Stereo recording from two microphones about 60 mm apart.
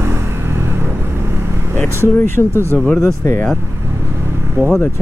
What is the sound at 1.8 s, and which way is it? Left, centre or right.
Speech, left.